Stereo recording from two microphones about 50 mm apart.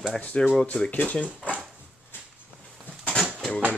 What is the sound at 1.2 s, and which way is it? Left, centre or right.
Speech, right.